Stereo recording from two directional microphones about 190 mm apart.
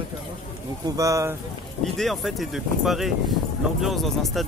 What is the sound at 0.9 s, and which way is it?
Speech, 15° right (ahead or behind).